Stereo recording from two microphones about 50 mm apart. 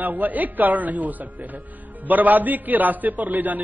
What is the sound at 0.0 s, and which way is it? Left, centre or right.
A man's voice, right.